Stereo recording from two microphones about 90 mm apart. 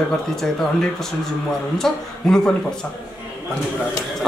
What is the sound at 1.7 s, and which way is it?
Speech, 5° left (ahead or behind).